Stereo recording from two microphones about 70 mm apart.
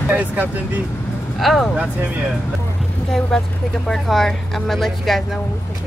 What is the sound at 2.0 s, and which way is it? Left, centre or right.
Speech, right.